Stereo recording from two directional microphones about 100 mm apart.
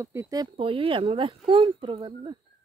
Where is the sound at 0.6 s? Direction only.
65° right (ahead or behind).